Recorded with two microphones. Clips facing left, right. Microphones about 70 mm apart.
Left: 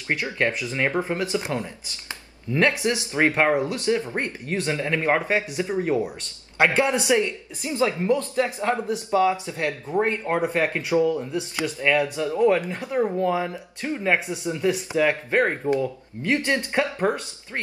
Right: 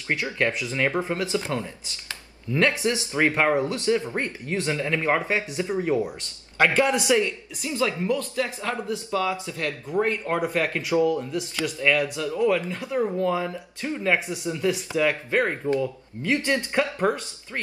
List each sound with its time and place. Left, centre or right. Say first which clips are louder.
0.1 s a man's voice: left 1 dB; left